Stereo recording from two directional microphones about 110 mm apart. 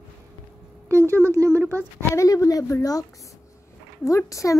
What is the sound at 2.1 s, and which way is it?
Speech, 30° left (ahead or behind).